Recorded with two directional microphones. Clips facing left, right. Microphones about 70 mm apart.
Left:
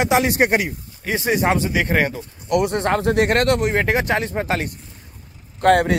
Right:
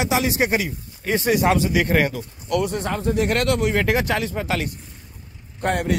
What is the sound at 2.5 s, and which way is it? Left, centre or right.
Speech, left.